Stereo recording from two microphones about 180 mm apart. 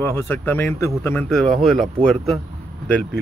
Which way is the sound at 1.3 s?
Centre (ahead or behind).